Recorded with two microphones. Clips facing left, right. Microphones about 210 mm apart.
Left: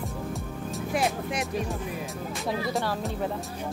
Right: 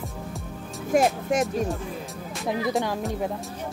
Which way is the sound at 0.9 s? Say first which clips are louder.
Right 7 dB; 45° right (ahead or behind).